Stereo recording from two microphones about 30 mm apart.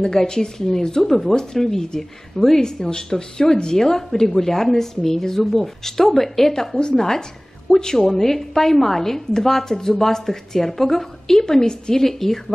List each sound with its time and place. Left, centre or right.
0.0 s a woman's voice: left
5.4 s a woman's voice: centre